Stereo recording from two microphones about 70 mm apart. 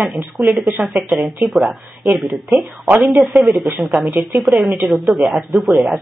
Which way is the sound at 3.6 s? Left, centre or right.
Right.